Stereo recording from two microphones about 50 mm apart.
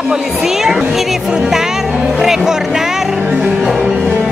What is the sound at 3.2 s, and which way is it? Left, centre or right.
Music, right.